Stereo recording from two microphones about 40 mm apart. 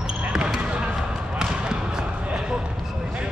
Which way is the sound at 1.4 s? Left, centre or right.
Centre.